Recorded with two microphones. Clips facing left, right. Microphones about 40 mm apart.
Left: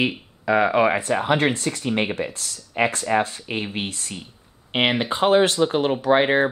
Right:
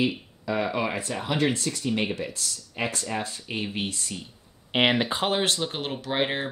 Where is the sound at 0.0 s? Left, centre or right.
Left.